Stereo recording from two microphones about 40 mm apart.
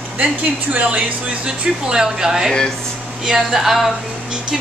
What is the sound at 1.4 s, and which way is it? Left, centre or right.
Speech, centre.